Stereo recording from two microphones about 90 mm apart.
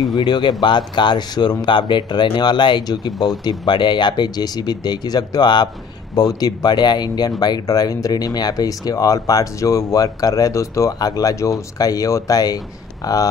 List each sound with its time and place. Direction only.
0.0 s speech: 50° left (ahead or behind)